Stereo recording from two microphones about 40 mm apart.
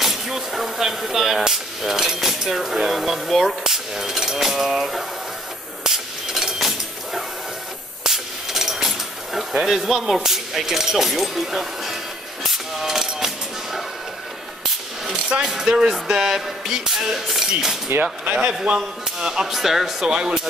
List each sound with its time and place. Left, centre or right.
0.0 s speech: centre
5.9 s vehicle: centre
8.0 s vehicle: centre
11.5 s speech: centre
12.4 s a sound: centre
15.4 s speech: centre
18.3 s speech: centre
19.5 s speech: centre